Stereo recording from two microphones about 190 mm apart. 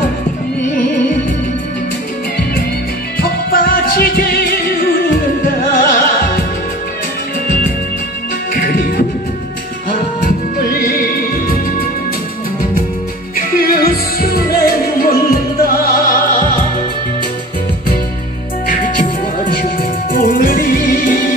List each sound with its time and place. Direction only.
3.2 s music: 50° left (ahead or behind)
8.5 s music: 45° left (ahead or behind)
10.6 s music: 50° left (ahead or behind)
13.4 s music: 50° left (ahead or behind)
18.7 s music: 45° left (ahead or behind)